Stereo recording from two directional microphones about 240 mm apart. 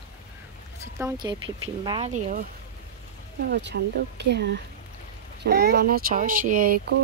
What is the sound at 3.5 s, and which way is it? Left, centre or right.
A child's voice, right.